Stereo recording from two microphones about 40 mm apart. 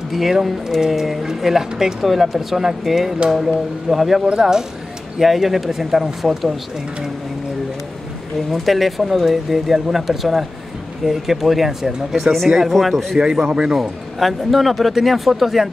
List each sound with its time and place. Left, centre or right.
0.1 s speech: centre
8.5 s speech: centre
13.5 s a man's voice: centre
13.7 s speech: centre